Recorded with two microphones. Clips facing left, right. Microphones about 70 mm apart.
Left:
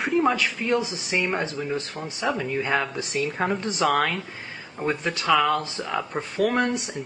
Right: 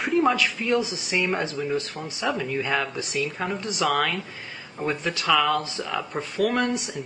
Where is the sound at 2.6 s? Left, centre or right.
Left.